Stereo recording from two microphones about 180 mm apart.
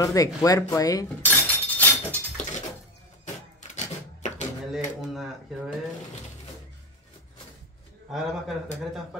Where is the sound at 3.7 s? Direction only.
40° left (ahead or behind).